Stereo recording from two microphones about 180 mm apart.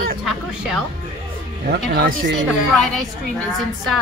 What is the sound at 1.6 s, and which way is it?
Speech, 55° right (ahead or behind).